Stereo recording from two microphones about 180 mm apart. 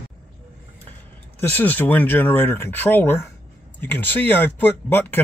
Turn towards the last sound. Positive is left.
turn(degrees=10)  # may be behind; listen again after turning